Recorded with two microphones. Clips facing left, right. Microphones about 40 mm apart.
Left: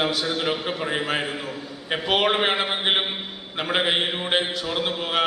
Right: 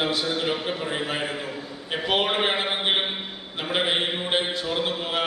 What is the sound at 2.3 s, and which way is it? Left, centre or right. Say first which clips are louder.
Speech: left 2 dB; centre.